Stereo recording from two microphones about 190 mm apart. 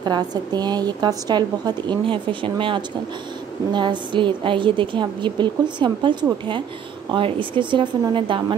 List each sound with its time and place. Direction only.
0.0 s speech: 20° right (ahead or behind)